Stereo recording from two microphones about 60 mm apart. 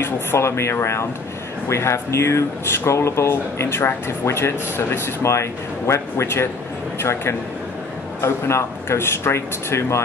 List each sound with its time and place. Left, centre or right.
0.0 s speech: left